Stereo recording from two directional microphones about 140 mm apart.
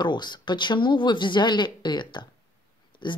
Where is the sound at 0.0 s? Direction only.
30° left (ahead or behind).